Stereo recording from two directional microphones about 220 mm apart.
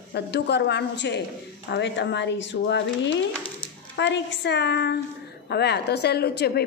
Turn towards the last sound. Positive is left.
turn(degrees=45)  # may be behind; listen again after turning